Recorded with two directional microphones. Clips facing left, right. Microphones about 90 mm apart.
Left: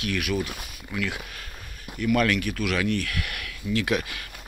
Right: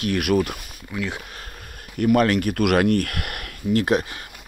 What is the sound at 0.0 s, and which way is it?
Speech, 45° right (ahead or behind).